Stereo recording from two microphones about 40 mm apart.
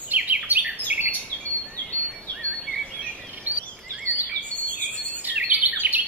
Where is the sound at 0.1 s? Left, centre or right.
Right.